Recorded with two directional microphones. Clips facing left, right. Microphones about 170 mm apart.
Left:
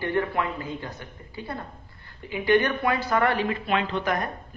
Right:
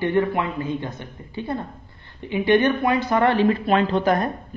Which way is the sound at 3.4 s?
40° right (ahead or behind).